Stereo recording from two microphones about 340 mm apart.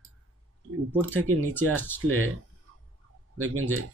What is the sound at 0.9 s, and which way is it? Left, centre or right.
Speech, centre.